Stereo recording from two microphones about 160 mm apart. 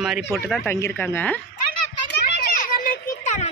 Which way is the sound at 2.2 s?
65° left (ahead or behind).